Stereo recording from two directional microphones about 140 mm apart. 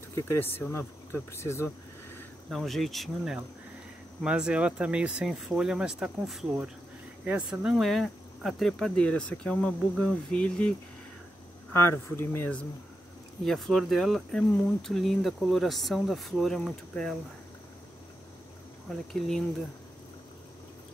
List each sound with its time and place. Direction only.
0.1 s speech: 15° left (ahead or behind)
1.3 s a sound: 20° left (ahead or behind)
2.5 s speech: centre (ahead or behind)
11.7 s speech: 15° left (ahead or behind)
13.5 s speech: centre (ahead or behind)